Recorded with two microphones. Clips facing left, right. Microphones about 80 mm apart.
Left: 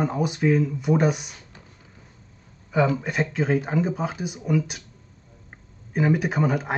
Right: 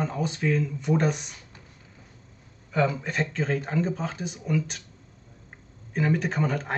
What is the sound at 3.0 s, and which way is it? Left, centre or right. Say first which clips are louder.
Speech: left 3 dB; centre.